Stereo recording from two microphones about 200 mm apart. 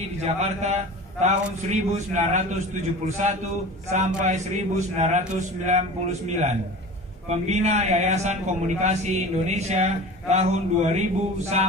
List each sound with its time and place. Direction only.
0.2 s a man's voice: 35° right (ahead or behind)